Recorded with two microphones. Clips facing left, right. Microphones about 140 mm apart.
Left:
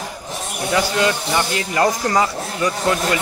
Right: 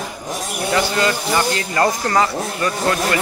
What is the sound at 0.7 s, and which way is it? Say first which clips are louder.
Speech: left 1 dB; 10° left (ahead or behind).